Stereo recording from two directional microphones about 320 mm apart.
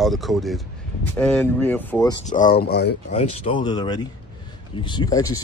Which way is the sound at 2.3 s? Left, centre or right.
Left.